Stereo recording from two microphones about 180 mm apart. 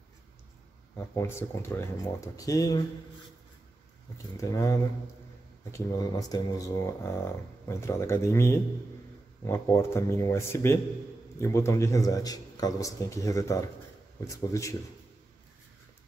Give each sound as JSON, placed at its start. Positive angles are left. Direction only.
{"t": 0.9, "sound": "speech", "side_deg": 15}
{"t": 4.4, "sound": "speech", "side_deg": 15}